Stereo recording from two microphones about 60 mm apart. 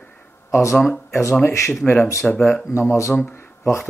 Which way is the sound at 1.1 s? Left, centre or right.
Left.